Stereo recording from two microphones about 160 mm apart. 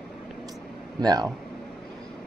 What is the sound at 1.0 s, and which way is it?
Speech, 25° right (ahead or behind).